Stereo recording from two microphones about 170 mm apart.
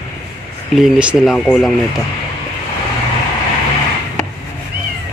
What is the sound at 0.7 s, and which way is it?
Speech, 5° right (ahead or behind).